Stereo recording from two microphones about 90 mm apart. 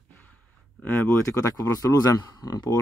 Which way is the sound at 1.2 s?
35° left (ahead or behind).